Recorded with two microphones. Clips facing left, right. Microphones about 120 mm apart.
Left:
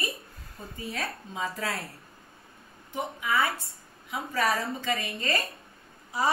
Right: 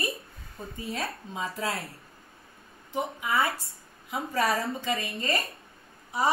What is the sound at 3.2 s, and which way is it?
A woman's voice, 30° right (ahead or behind).